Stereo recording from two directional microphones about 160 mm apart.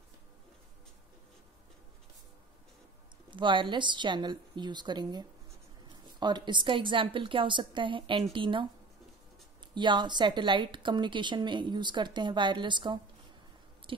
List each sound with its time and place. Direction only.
3.3 s a woman's voice: 30° right (ahead or behind)
9.8 s a woman's voice: 30° right (ahead or behind)
13.9 s chewing: 30° right (ahead or behind)